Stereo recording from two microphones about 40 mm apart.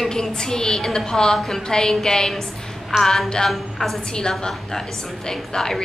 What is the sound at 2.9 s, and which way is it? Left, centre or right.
A woman's voice, centre.